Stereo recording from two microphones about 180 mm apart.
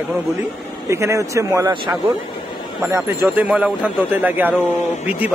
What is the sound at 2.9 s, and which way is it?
Speech, 10° right (ahead or behind).